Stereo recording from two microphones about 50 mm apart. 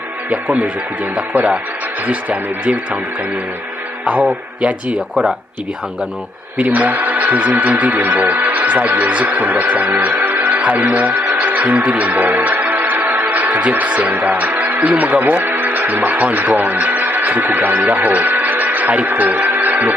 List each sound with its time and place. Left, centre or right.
0.3 s speech: right
4.0 s speech: right
6.6 s speech: right